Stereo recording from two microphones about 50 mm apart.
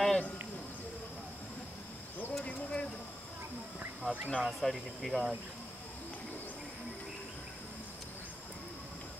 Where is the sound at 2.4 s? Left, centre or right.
Left.